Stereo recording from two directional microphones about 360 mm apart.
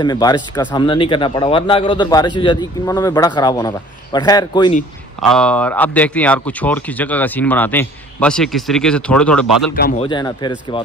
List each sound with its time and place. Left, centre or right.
0.0 s a man's voice: centre
9.8 s speech: left
10.0 s a man's voice: centre